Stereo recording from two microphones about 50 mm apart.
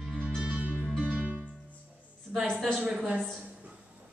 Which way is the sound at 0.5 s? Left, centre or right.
Right.